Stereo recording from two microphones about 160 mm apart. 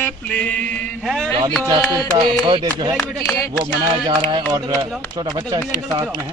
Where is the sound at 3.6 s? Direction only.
30° right (ahead or behind).